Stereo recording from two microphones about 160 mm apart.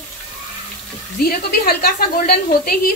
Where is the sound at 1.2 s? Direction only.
70° left (ahead or behind).